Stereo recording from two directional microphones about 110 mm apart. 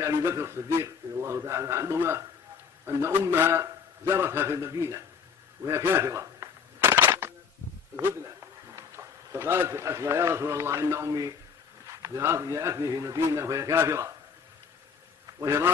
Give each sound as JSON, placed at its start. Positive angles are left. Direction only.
{"t": 0.0, "sound": "a man's voice", "side_deg": -25}
{"t": 6.8, "sound": "a sound", "side_deg": -20}
{"t": 7.9, "sound": "a man's voice", "side_deg": -25}
{"t": 15.4, "sound": "a man's voice", "side_deg": -25}